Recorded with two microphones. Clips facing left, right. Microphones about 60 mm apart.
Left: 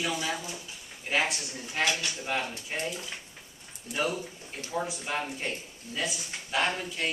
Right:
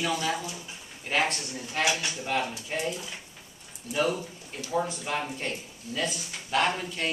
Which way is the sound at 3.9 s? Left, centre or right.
Centre.